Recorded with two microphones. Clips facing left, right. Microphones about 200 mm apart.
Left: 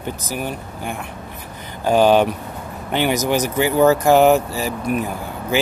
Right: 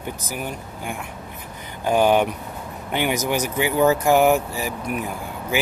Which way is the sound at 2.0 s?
90° left.